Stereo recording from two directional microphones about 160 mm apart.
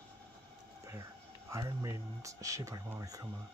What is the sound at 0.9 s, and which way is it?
Speech, 20° right (ahead or behind).